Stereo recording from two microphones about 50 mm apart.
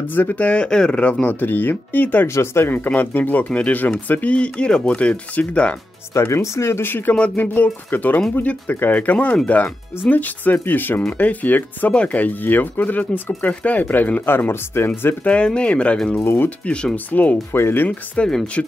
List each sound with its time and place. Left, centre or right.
0.1 s speech: left
0.4 s speech: left
1.2 s speech: left
2.2 s speech: left
2.7 s speech: left
6.2 s speech: left
14.5 s speech: left
15.2 s speech: left
17.5 s speech: left
17.8 s speech: centre